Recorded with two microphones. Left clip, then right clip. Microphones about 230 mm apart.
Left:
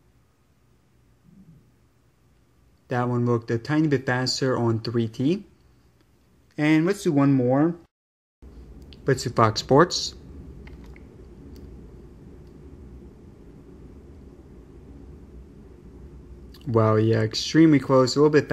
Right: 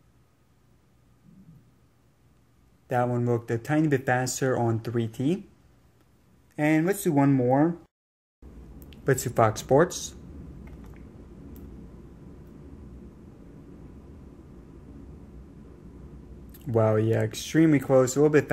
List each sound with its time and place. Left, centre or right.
2.9 s speech: centre
6.5 s speech: centre
8.9 s speech: centre
16.5 s speech: centre